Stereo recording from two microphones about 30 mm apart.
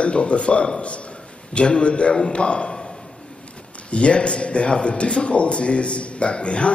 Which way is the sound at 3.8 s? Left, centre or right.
Left.